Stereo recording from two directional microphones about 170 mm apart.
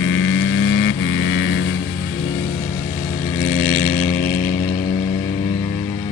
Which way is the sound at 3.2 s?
40° left (ahead or behind).